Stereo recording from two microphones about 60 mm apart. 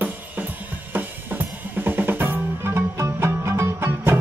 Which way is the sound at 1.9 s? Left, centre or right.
Right.